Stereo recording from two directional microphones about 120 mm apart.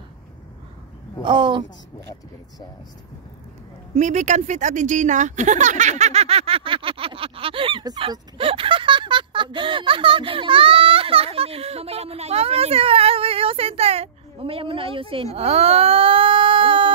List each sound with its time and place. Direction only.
1.2 s speech: 40° right (ahead or behind)
3.9 s speech: 80° right; by 7.8 s 45° right (ahead or behind)
7.8 s speech: 35° right (ahead or behind)